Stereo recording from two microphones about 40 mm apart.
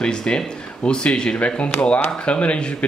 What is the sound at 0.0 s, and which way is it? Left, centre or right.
Speech, left.